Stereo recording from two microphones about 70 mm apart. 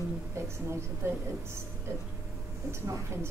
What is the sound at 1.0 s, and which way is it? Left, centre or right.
Speech, right.